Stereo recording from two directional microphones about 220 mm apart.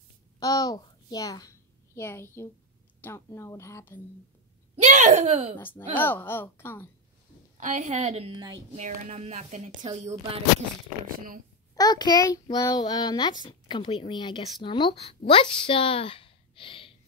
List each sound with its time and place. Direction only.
0.4 s a child's voice: 15° left (ahead or behind)
4.8 s a woman's voice: 30° right (ahead or behind)
5.6 s speech: 10° left (ahead or behind)
7.5 s a woman's voice: 30° right (ahead or behind)
8.7 s a woman's voice: 30° right (ahead or behind)
11.1 s speech: 40° right (ahead or behind)
11.7 s a child's voice: 15° left (ahead or behind)